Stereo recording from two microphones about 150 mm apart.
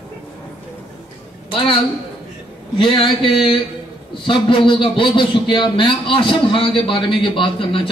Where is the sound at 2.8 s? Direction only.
35° left (ahead or behind).